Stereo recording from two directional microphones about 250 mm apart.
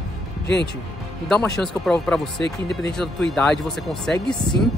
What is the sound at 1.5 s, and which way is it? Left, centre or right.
Speech, centre.